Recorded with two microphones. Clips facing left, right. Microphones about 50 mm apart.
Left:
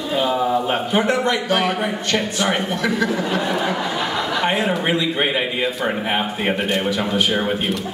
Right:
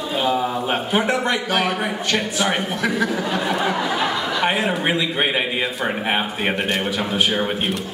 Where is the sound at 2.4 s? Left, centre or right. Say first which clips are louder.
Left 1 dB; centre.